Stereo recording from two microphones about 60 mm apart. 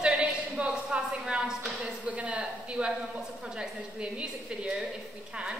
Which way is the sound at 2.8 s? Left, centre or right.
Right.